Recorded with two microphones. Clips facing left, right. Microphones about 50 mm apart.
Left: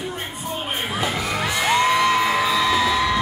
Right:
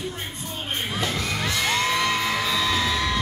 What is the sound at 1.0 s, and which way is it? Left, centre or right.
Music, centre.